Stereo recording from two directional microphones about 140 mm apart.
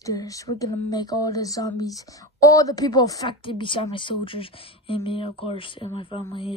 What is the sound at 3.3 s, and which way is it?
A woman's voice, 35° left (ahead or behind).